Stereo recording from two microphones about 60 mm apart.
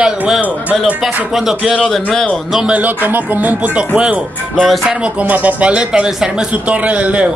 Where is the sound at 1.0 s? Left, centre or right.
Centre.